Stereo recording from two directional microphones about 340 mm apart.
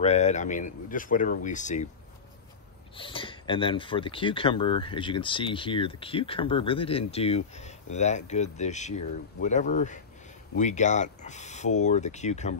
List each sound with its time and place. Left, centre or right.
0.0 s speech: centre
3.0 s speech: centre